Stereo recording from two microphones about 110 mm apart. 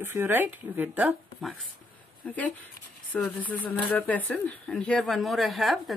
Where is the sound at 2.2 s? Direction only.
15° left (ahead or behind).